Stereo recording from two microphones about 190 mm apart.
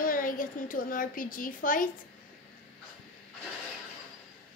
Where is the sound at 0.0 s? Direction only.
50° left (ahead or behind).